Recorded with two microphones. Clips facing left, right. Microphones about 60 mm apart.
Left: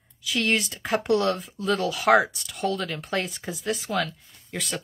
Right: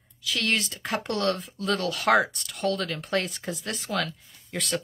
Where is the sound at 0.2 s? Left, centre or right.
Centre.